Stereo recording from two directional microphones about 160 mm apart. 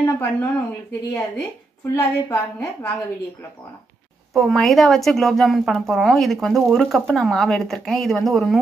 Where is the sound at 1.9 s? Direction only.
15° left (ahead or behind).